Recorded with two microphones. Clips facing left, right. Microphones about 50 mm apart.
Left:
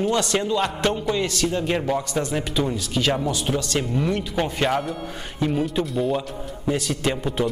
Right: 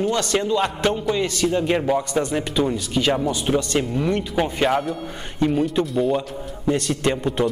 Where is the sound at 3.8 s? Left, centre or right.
Centre.